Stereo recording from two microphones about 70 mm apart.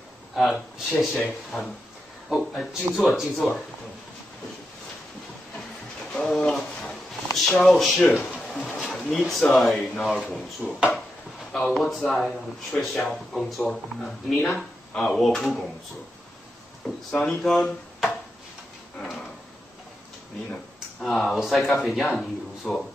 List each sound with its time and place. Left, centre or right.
0.4 s speech: centre
6.1 s bird: centre
7.3 s speech: centre
8.5 s pigeon: centre
9.1 s speech: centre
10.6 s speech: right
11.5 s speech: centre
17.1 s speech: centre
21.0 s speech: centre